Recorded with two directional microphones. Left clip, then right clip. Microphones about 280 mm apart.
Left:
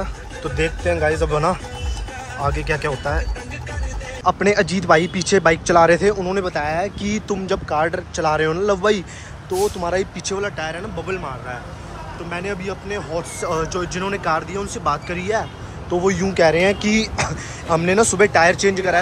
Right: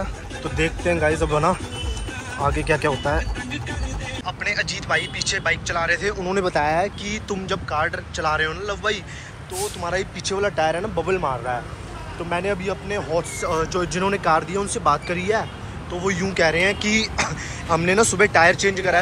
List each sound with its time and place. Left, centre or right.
0.0 s a man's voice: centre
4.2 s speech: left; by 10.5 s centre
10.5 s speech: centre
15.9 s speech: centre